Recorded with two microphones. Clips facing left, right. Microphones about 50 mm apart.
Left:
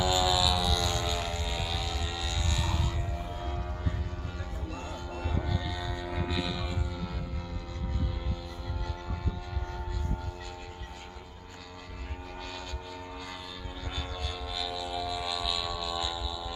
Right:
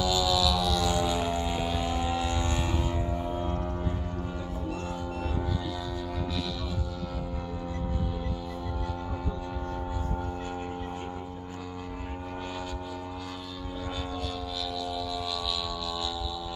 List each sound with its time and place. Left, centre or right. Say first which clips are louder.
0.0 s vehicle: right 1 dB; centre
0.6 s vehicle: right 4 dB; centre; by 2.8 s right
14.6 s a sound: even; centre